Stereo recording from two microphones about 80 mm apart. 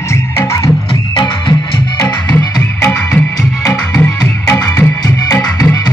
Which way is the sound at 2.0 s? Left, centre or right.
Left.